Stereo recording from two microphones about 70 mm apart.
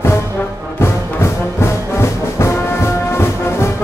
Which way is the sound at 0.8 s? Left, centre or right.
Left.